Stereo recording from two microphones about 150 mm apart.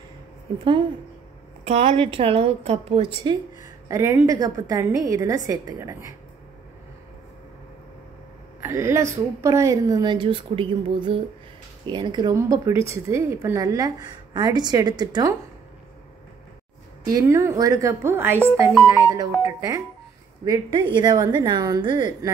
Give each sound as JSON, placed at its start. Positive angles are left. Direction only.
{"t": 1.6, "sound": "a woman's voice", "side_deg": -45}
{"t": 3.9, "sound": "speech", "side_deg": -20}
{"t": 8.6, "sound": "speech", "side_deg": -20}
{"t": 17.1, "sound": "speech", "side_deg": -20}
{"t": 21.0, "sound": "speech", "side_deg": -25}